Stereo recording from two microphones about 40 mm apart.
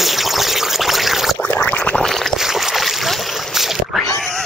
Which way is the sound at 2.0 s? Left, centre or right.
Centre.